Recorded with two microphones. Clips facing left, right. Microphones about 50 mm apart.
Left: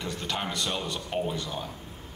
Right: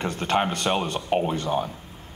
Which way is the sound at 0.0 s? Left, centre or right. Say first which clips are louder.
Right 9 dB; right.